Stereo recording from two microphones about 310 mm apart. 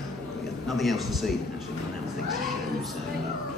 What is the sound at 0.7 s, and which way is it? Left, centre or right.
Speech, centre.